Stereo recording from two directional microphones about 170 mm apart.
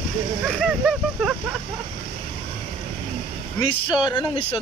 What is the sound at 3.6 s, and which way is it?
Speech, 30° left (ahead or behind).